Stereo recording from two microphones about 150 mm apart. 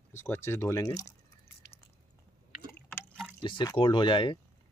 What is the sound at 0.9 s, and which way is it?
Drip, 25° left (ahead or behind).